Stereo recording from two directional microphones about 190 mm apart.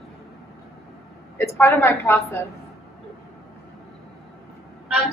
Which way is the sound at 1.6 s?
15° left (ahead or behind).